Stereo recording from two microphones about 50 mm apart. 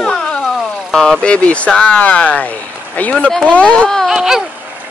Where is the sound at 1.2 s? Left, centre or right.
Left.